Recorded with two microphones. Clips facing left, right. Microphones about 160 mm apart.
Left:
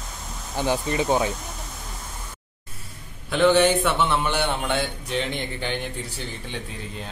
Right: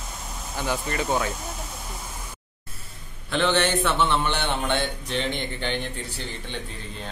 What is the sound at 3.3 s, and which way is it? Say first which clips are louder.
Speech: left 5 dB; 10° left (ahead or behind).